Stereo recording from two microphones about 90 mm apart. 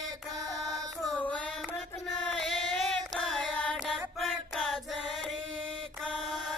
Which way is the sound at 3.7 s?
Centre (ahead or behind).